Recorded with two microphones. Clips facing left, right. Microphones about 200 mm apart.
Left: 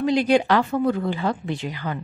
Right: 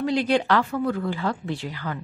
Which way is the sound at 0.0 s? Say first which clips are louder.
Left 3 dB; 15° left (ahead or behind).